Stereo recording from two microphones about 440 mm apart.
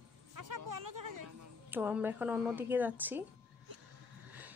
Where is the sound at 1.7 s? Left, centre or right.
Centre.